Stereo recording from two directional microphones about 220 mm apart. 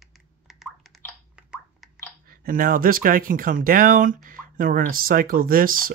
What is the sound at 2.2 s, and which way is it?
Speech, 40° right (ahead or behind).